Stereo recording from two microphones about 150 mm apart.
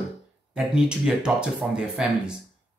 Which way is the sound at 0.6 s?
5° right (ahead or behind).